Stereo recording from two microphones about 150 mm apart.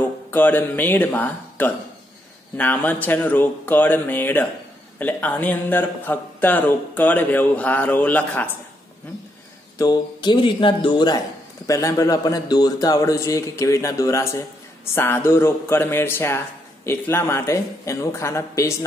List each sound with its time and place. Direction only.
0.0 s speech: 10° left (ahead or behind)
9.8 s speech: 30° left (ahead or behind)